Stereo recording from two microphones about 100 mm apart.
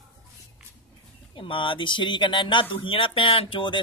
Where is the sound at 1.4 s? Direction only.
60° left (ahead or behind).